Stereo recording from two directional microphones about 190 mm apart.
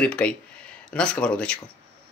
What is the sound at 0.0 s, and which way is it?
Speech, 5° left (ahead or behind).